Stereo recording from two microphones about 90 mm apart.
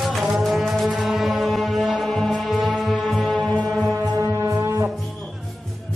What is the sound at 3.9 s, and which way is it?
Music, 35° right (ahead or behind).